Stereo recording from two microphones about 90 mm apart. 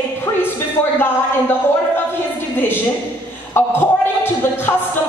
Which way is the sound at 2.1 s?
25° left (ahead or behind).